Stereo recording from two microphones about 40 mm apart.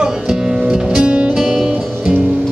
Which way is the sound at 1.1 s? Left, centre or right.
Right.